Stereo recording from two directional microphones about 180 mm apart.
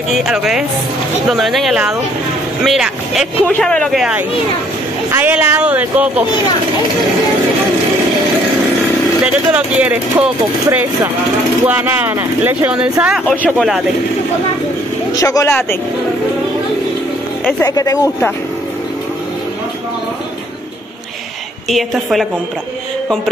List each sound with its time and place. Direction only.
0.1 s speech: 5° right (ahead or behind)
9.2 s speech: 5° right (ahead or behind)
15.1 s speech: 20° left (ahead or behind)
17.6 s speech: 20° left (ahead or behind)
21.6 s speech: centre (ahead or behind)